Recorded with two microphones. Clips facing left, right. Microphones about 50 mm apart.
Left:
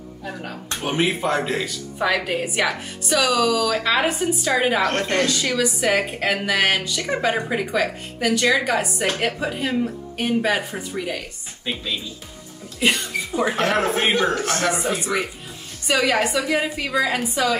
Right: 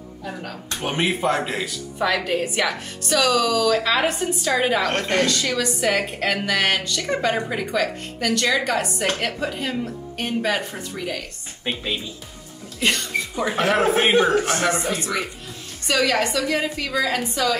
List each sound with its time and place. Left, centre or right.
0.2 s a woman's voice: centre
0.7 s speech: centre
2.0 s speech: centre
5.2 s a woman's voice: centre
11.7 s speech: right
12.8 s speech: centre
14.7 s a woman's voice: centre